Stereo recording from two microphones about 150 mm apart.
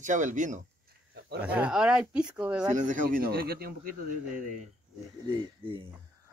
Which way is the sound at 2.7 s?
60° right (ahead or behind).